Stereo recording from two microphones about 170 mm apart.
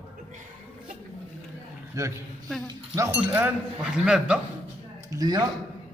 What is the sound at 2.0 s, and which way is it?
A man's voice, 20° right (ahead or behind).